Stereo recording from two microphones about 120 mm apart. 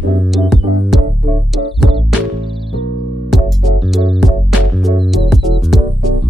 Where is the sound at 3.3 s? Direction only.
Centre (ahead or behind).